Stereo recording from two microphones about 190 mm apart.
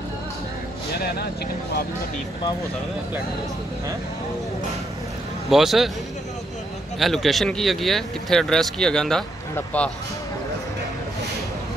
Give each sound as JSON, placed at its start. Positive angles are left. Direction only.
{"t": 0.9, "sound": "speech", "side_deg": 55}
{"t": 5.5, "sound": "speech", "side_deg": 0}
{"t": 7.0, "sound": "speech", "side_deg": 0}